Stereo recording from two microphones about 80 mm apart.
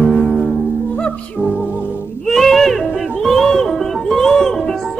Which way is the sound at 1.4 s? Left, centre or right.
Centre.